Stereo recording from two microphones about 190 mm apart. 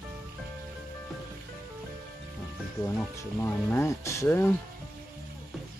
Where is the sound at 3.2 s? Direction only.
10° left (ahead or behind).